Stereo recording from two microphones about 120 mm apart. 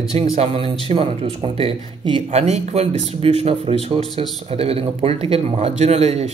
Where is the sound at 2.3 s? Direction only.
65° right (ahead or behind).